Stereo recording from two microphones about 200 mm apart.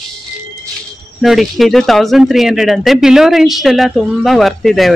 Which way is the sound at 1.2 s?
Centre (ahead or behind).